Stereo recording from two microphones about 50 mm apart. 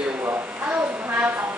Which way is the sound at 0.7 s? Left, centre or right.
Right.